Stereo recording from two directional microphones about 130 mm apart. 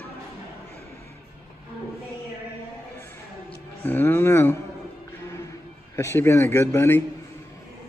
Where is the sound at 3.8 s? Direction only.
15° left (ahead or behind).